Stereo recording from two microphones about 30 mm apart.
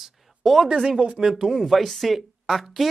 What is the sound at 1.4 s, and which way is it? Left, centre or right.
Speech, centre.